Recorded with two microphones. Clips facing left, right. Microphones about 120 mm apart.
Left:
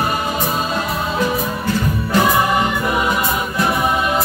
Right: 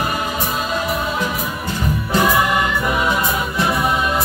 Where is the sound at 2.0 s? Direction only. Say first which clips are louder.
Even; 20° left (ahead or behind).